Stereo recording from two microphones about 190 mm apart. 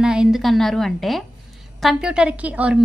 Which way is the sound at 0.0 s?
5° right (ahead or behind).